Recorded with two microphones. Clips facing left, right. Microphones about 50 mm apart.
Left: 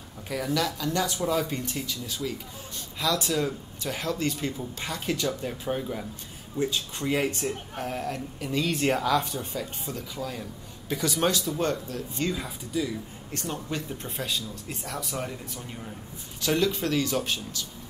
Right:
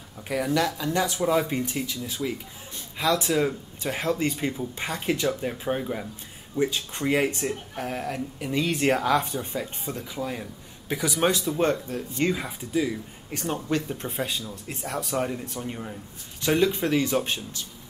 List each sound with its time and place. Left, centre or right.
0.3 s speech: centre
9.0 s speech: right